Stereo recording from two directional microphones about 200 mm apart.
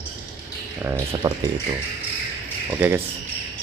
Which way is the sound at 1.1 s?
20° right (ahead or behind).